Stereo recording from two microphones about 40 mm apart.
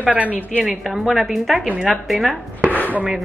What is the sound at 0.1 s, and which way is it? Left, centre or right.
Speech, right.